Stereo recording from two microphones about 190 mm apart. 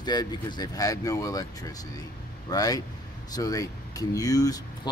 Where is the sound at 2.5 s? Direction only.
20° left (ahead or behind).